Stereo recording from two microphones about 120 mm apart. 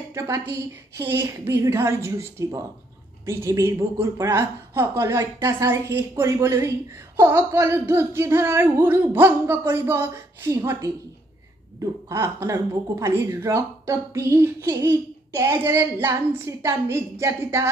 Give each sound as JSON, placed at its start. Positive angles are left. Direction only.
{"t": 0.1, "sound": "a woman's voice", "side_deg": -25}